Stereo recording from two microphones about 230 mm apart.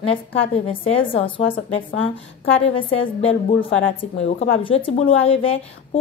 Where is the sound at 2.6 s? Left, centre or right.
Left.